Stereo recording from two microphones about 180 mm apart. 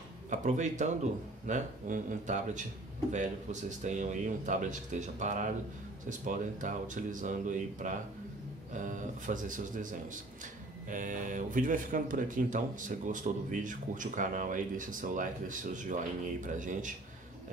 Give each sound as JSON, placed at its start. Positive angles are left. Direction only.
{"t": 0.3, "sound": "speech", "side_deg": -40}
{"t": 3.8, "sound": "speech", "side_deg": -45}